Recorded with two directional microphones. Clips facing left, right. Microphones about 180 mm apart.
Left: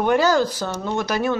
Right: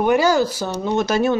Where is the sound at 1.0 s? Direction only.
25° right (ahead or behind).